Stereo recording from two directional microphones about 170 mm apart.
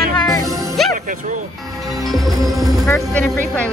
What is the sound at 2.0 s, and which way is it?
Speech, centre (ahead or behind).